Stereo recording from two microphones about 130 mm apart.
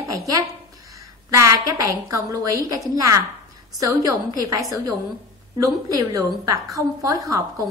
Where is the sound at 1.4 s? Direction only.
25° right (ahead or behind).